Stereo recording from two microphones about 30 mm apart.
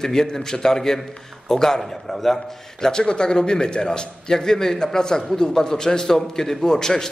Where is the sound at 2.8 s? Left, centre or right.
Left.